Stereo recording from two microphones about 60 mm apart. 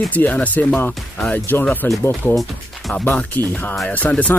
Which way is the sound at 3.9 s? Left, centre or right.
Left.